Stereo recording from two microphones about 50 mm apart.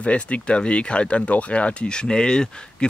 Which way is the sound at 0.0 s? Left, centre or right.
Left.